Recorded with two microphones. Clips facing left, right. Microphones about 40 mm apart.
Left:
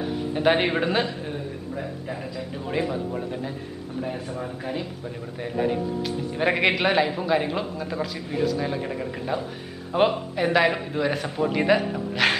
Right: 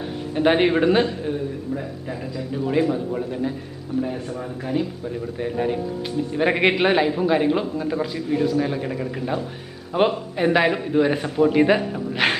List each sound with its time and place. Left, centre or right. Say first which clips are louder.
0.3 s a man's voice: right 4 dB; centre